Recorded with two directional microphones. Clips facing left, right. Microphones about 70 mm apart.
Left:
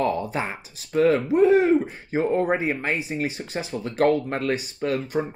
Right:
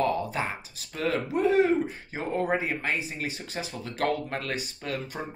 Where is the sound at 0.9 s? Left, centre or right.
Left.